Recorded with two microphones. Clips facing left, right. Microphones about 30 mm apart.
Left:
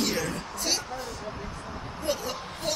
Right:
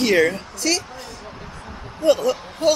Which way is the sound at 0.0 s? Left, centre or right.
Right.